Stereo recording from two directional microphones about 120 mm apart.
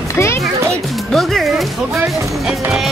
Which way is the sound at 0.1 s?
25° left (ahead or behind).